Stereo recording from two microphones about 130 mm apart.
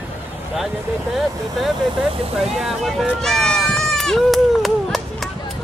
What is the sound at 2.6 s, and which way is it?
Speech, centre (ahead or behind).